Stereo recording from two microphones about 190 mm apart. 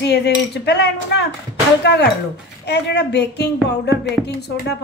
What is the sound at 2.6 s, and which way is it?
Speech, 60° left (ahead or behind).